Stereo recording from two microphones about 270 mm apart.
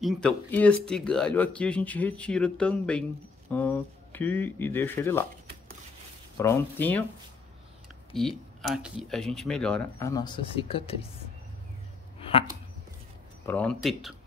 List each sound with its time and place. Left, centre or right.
0.0 s speech: centre
6.3 s speech: centre
8.2 s speech: centre; by 11.1 s left
12.2 s dog: centre
13.5 s speech: centre